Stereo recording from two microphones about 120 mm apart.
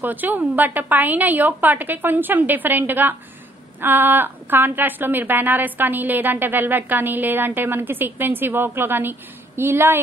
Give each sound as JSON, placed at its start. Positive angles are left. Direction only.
{"t": 0.0, "sound": "a woman's voice", "side_deg": -15}